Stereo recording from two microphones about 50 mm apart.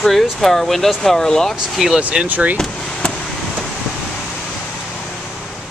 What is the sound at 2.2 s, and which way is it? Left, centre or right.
Speech, right.